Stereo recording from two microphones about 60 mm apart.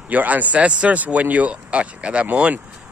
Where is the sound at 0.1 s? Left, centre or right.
Right.